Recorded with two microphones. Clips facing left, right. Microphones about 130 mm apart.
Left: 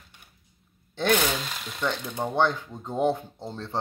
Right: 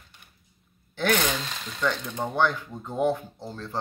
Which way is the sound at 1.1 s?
5° left (ahead or behind).